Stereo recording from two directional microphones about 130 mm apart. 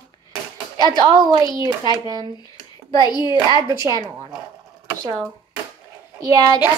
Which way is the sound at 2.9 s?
35° left (ahead or behind).